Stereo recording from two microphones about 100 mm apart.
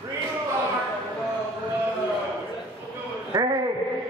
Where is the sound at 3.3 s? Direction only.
35° right (ahead or behind).